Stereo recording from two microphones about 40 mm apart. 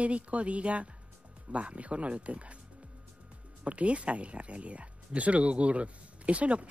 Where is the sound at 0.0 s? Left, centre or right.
Right.